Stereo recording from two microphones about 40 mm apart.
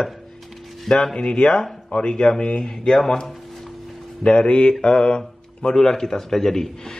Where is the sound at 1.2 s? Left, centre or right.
Left.